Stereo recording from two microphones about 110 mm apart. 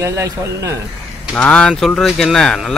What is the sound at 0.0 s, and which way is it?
Speech, 25° right (ahead or behind).